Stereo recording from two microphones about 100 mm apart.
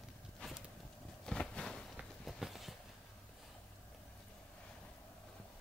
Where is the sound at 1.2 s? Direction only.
10° left (ahead or behind).